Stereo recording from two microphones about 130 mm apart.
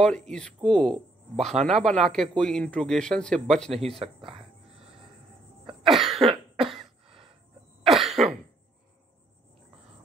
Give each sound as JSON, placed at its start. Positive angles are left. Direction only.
{"t": 0.0, "sound": "a man's voice", "side_deg": 5}
{"t": 1.4, "sound": "a man's voice", "side_deg": -60}
{"t": 1.7, "sound": "a man's voice", "side_deg": 0}
{"t": 3.9, "sound": "speech", "side_deg": -45}
{"t": 5.9, "sound": "a man's voice", "side_deg": 0}
{"t": 6.1, "sound": "cough", "side_deg": -45}
{"t": 7.1, "sound": "cricket", "side_deg": -45}
{"t": 7.9, "sound": "cough", "side_deg": 0}